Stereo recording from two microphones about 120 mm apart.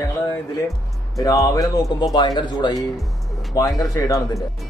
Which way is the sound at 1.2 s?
30° left (ahead or behind).